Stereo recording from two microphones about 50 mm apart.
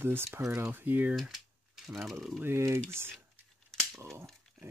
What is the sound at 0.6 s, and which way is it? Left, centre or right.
Speech, right.